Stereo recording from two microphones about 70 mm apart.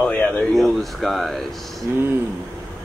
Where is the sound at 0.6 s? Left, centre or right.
Centre.